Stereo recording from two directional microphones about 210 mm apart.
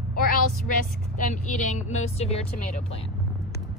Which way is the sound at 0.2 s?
40° left (ahead or behind).